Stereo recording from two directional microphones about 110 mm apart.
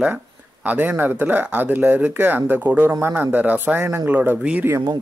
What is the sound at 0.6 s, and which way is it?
Speech, 15° right (ahead or behind).